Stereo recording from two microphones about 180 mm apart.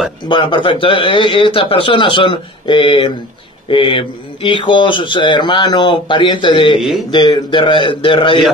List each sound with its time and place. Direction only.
0.3 s speech: 30° left (ahead or behind)